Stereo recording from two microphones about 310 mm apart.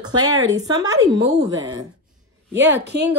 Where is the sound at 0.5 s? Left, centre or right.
Centre.